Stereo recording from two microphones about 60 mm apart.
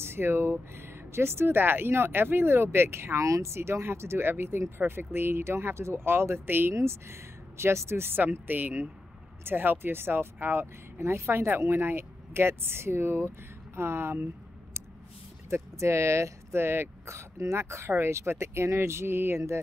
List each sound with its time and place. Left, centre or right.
0.0 s speech: right
3.3 s speech: right
6.7 s speech: right
15.5 s speech: right